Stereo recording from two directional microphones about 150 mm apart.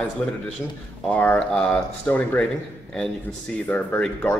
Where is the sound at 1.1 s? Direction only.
10° left (ahead or behind).